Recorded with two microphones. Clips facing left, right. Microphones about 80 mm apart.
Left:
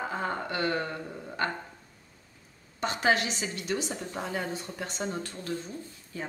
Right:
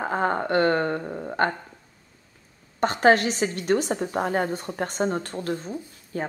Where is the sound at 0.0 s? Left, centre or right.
Right.